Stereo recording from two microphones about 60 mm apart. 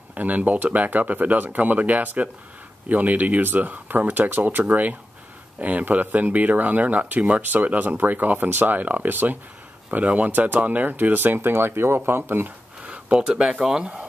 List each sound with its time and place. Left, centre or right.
0.1 s speech: right
12.8 s speech: centre